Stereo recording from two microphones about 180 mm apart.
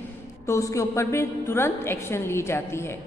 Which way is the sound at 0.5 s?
15° left (ahead or behind).